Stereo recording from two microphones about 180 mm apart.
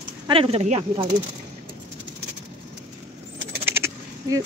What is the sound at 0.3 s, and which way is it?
Speech, 30° right (ahead or behind).